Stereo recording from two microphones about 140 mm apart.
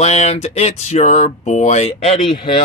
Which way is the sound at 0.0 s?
50° left (ahead or behind).